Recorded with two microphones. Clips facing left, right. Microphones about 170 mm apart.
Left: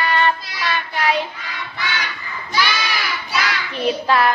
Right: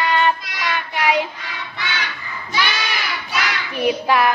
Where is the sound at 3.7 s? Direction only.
15° right (ahead or behind).